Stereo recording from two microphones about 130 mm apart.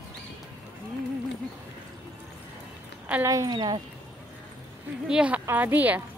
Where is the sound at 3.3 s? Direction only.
30° right (ahead or behind).